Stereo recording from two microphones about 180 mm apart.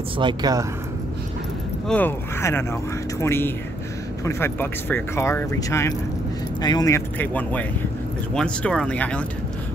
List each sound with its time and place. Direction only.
0.2 s speech: 25° right (ahead or behind)
1.9 s speech: 10° left (ahead or behind)